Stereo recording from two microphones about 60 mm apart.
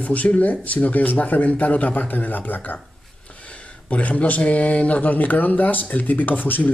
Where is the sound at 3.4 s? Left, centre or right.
Left.